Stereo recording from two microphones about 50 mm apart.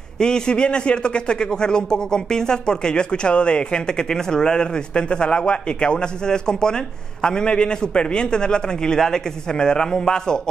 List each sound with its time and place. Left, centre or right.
0.2 s a man's voice: centre